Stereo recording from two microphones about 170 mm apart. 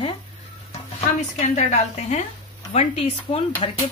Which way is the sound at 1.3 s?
45° left (ahead or behind).